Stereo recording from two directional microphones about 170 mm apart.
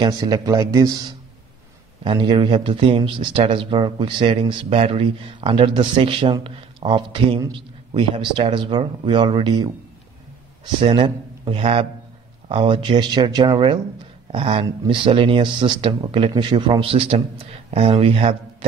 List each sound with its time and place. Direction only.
0.0 s speech: 25° right (ahead or behind)
2.0 s speech: 25° right (ahead or behind)